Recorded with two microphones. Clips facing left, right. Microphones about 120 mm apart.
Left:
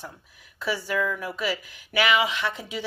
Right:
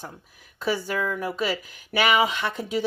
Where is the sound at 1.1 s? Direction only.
40° right (ahead or behind).